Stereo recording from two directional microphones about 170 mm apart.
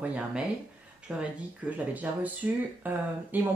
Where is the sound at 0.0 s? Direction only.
10° right (ahead or behind).